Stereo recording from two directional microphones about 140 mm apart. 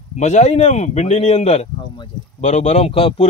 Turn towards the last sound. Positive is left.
turn(degrees=40)  # may be behind; listen again after turning